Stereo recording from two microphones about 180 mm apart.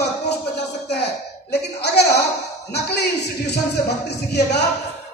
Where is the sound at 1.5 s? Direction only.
65° left (ahead or behind).